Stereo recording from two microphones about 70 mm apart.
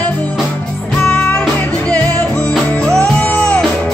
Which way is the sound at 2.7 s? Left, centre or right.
Centre.